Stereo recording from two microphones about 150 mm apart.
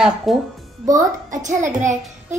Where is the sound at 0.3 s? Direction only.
Centre (ahead or behind).